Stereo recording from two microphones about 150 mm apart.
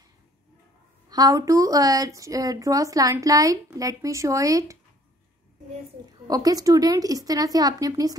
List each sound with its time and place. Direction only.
1.0 s a woman's voice: 25° right (ahead or behind)
6.2 s a woman's voice: 25° right (ahead or behind)